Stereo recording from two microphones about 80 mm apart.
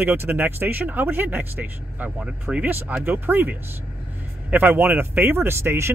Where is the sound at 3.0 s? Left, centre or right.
Right.